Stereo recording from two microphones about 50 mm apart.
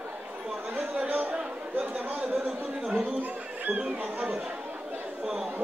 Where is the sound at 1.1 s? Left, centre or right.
Right.